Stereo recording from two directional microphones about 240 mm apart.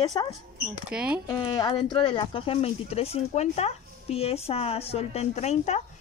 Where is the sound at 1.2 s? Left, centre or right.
Centre.